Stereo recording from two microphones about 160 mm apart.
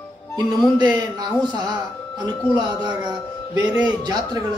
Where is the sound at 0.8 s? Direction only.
25° right (ahead or behind).